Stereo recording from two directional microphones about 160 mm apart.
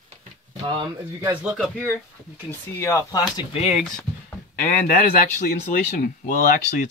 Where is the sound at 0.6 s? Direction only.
30° right (ahead or behind).